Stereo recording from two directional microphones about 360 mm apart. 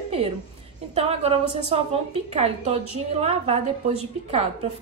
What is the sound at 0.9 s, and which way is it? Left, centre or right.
A woman's voice, centre.